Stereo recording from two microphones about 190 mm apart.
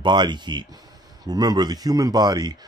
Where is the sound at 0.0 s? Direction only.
25° right (ahead or behind).